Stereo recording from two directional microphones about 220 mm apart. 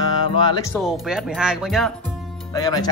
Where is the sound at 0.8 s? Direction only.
5° right (ahead or behind).